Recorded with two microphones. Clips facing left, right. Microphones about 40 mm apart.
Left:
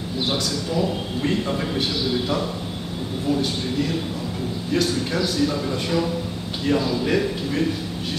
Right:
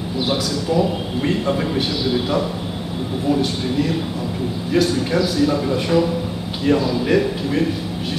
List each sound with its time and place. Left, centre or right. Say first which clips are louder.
0.2 s a man's voice: right 3 dB; centre